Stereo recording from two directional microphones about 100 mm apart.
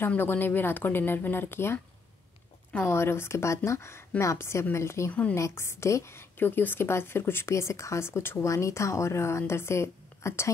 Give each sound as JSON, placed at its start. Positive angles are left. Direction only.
{"t": 0.0, "sound": "a woman's voice", "side_deg": 20}